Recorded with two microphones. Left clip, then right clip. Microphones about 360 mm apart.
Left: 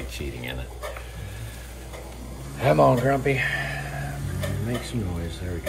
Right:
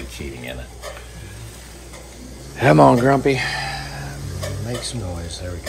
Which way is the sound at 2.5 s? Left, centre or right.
Right.